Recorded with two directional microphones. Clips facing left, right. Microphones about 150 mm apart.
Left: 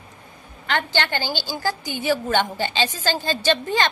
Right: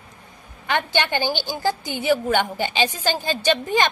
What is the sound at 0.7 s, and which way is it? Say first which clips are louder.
A woman's voice: right 1 dB; 15° right (ahead or behind).